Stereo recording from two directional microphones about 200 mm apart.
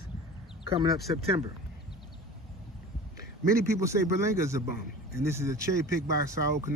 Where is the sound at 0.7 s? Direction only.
25° right (ahead or behind).